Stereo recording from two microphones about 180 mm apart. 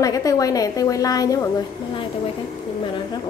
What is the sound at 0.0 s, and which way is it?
A woman's voice, 20° left (ahead or behind).